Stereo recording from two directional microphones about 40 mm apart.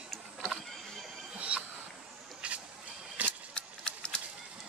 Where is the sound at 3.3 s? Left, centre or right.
Left.